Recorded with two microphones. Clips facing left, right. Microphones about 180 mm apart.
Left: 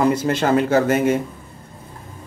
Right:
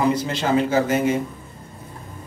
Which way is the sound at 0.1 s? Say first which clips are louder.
Left 3 dB; 55° left (ahead or behind).